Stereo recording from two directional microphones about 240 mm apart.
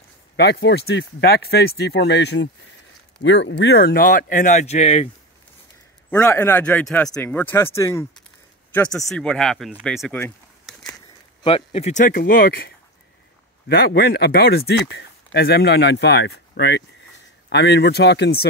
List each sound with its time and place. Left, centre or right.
0.4 s speech: left
6.0 s speech: centre
11.4 s speech: left